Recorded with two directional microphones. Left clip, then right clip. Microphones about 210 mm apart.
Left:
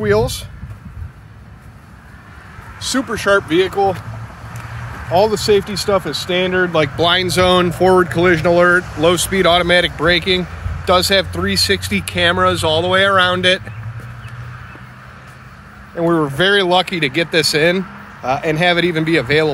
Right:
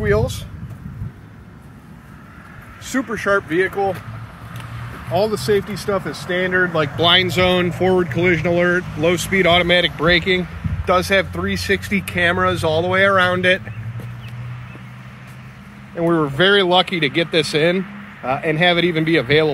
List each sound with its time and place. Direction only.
0.0 s speech: 25° left (ahead or behind)
2.9 s speech: 20° left (ahead or behind)
5.9 s speech: 30° left (ahead or behind); by 13.6 s 15° left (ahead or behind)
16.0 s speech: 15° left (ahead or behind)